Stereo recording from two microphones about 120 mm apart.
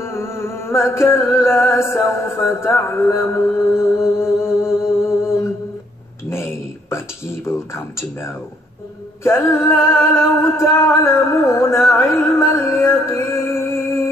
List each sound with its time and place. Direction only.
0.0 s music: 20° left (ahead or behind)
6.3 s speech: 20° left (ahead or behind)
9.2 s music: 20° left (ahead or behind)